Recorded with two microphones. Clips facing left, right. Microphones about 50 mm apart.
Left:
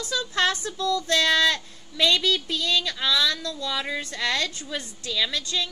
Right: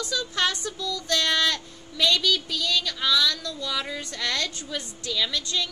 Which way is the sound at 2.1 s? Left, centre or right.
Left.